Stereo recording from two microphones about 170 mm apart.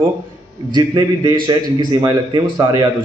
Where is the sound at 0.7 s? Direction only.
20° right (ahead or behind).